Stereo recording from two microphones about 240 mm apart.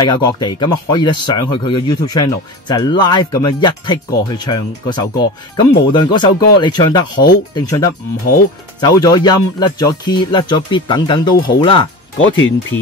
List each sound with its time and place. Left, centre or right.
0.0 s speech: centre
12.2 s speech: left